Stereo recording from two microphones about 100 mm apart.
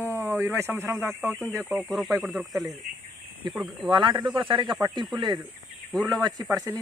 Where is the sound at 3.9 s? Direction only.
50° right (ahead or behind).